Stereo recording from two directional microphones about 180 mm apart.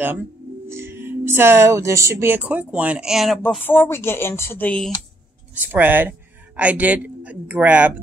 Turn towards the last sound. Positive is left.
turn(degrees=-10)  # may be behind; listen again after turning